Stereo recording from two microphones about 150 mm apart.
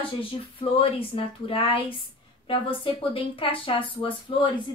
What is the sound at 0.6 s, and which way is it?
A woman's voice, 35° left (ahead or behind).